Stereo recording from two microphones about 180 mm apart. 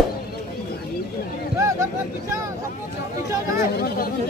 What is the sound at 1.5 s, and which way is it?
Vehicle, 15° right (ahead or behind).